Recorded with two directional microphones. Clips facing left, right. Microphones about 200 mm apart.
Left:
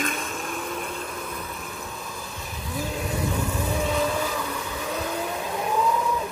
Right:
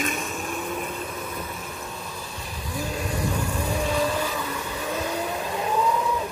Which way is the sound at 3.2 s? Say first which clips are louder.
Left 1 dB; centre (ahead or behind).